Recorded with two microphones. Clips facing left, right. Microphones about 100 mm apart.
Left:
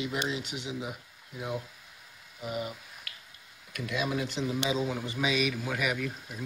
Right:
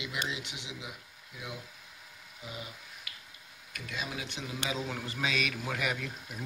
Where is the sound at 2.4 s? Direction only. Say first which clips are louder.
Left 9 dB; 60° left (ahead or behind).